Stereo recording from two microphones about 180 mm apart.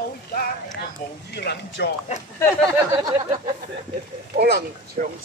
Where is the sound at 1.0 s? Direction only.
50° left (ahead or behind).